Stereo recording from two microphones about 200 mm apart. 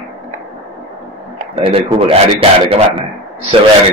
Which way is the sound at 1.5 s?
30° right (ahead or behind).